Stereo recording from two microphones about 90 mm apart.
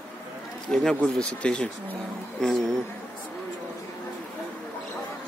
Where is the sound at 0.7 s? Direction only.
10° left (ahead or behind).